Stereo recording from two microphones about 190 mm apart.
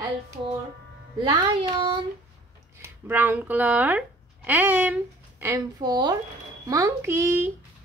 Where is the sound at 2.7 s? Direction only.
10° right (ahead or behind).